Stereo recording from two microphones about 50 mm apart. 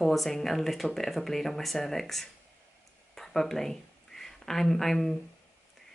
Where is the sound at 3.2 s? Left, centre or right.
Centre.